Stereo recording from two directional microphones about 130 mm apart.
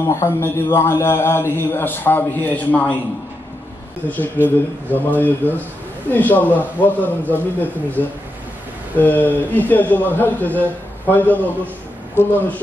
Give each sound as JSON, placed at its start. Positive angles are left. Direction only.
{"t": 0.0, "sound": "a man's voice", "side_deg": 20}
{"t": 4.1, "sound": "a man's voice", "side_deg": 15}